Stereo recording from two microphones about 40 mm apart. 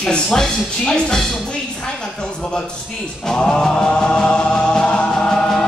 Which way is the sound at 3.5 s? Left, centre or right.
Left.